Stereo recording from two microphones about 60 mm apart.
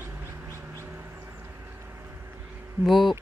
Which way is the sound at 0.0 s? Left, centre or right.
Right.